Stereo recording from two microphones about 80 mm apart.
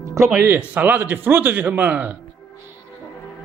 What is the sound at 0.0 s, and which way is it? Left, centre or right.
Music, right.